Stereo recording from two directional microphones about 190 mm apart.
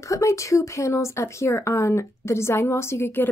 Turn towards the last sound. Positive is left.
turn(degrees=10)  # may be behind; listen again after turning